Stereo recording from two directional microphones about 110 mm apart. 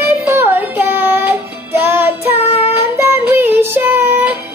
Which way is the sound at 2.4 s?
70° left (ahead or behind).